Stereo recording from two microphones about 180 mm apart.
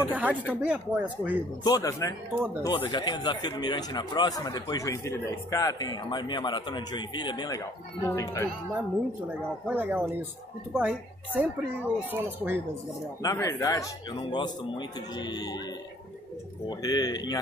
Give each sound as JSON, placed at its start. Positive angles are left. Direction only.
{"t": 0.0, "sound": "speech", "side_deg": -10}
{"t": 1.6, "sound": "speech", "side_deg": 20}
{"t": 9.3, "sound": "speech", "side_deg": -10}
{"t": 13.2, "sound": "speech", "side_deg": 15}
{"t": 16.6, "sound": "speech", "side_deg": 20}